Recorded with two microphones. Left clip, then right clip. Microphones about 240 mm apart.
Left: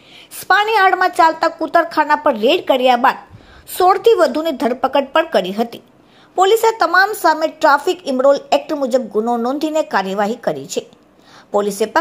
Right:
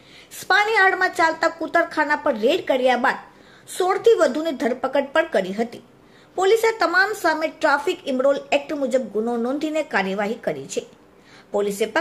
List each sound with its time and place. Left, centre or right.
0.3 s a woman's voice: centre